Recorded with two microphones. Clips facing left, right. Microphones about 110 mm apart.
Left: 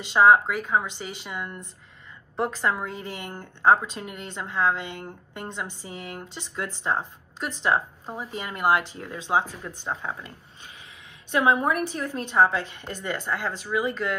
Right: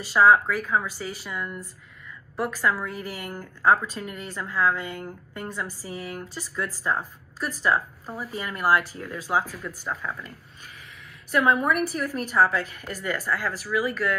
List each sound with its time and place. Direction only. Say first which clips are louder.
0.0 s a woman's voice: left 1 dB; 25° left (ahead or behind)
11.3 s a woman's voice: even; 30° left (ahead or behind)